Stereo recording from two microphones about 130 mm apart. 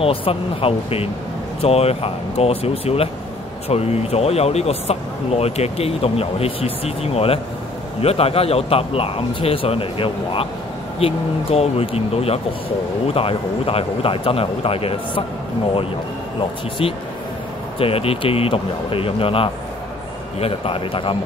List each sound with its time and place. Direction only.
0.0 s speech: 45° left (ahead or behind)
16.3 s speech: 45° left (ahead or behind)